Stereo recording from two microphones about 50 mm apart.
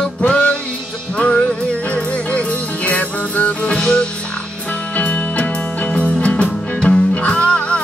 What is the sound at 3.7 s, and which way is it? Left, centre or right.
Music, centre.